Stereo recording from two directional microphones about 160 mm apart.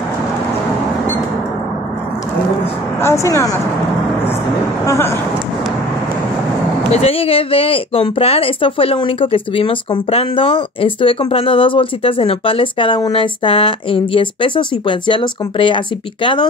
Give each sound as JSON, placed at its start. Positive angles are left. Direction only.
{"t": 3.0, "sound": "speech", "side_deg": 15}
{"t": 4.8, "sound": "speech", "side_deg": 20}
{"t": 6.9, "sound": "speech", "side_deg": 40}